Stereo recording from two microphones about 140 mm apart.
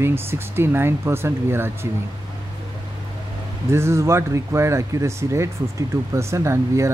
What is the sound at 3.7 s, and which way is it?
Speech, 20° right (ahead or behind).